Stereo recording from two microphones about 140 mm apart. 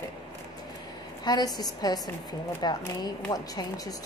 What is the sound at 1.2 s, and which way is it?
A woman's voice, 30° left (ahead or behind).